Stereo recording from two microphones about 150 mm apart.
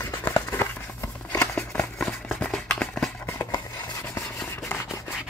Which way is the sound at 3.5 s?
25° left (ahead or behind).